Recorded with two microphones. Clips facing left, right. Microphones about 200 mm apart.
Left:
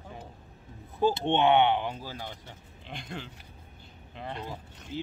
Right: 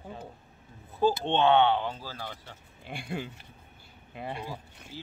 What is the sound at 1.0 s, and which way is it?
Speech, 15° left (ahead or behind).